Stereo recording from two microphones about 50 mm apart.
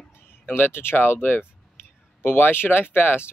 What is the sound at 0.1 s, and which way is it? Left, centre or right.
Speech, left.